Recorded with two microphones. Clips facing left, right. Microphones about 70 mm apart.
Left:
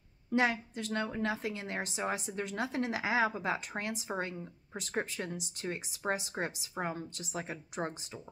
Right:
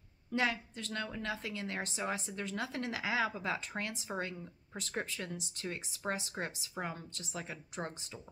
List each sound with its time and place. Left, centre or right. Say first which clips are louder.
0.3 s speech: left 4 dB; left
4.2 s speech: left 2 dB; left